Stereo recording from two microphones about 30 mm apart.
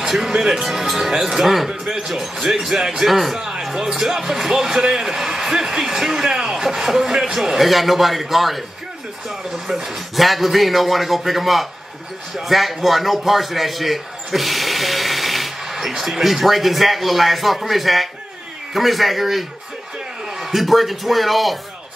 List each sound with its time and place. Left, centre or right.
0.0 s a man's voice: centre
1.7 s a man's voice: centre
3.3 s a sound: right
3.6 s a man's voice: centre